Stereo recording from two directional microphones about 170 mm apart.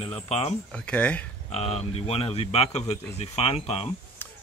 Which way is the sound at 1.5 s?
35° left (ahead or behind).